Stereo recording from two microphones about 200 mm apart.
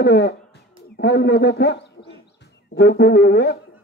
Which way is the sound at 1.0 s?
60° left (ahead or behind).